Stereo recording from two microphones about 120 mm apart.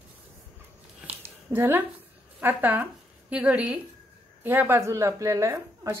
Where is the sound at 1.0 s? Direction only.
20° right (ahead or behind).